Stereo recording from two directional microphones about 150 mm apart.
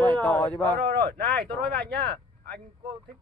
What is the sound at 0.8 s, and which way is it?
Speech, 90° right.